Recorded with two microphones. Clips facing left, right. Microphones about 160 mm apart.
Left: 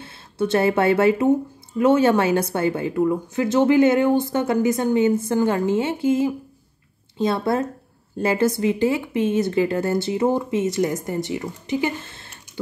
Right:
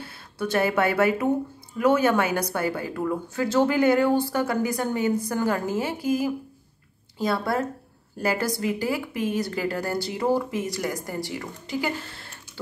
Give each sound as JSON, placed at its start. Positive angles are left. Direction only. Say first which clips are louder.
{"t": 0.0, "sound": "speech", "louder": "left 6 dB", "side_deg": 25}